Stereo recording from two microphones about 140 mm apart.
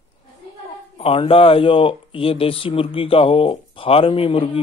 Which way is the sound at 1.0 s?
45° left (ahead or behind).